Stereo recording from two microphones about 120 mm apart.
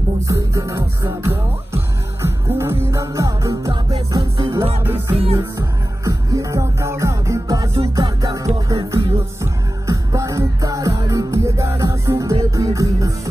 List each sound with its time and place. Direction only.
0.3 s music: 25° right (ahead or behind)
5.1 s music: 55° right (ahead or behind)
5.6 s music: 30° right (ahead or behind)